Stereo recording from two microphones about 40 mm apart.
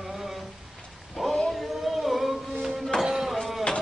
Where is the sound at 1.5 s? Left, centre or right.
Centre.